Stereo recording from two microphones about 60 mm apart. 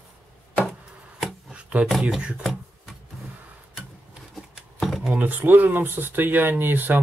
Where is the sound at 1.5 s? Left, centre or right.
Right.